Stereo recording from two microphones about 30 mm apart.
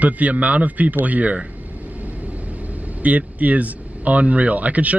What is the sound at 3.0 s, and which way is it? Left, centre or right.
Speech, right.